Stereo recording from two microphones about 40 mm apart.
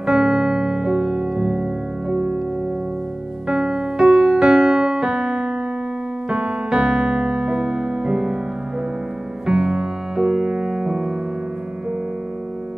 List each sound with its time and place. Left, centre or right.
0.0 s music: centre
3.4 s music: right
6.2 s piano: right
9.5 s music: right